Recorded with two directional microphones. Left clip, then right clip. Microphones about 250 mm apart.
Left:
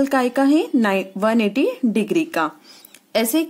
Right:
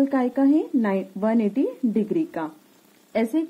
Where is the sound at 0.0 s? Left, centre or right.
Centre.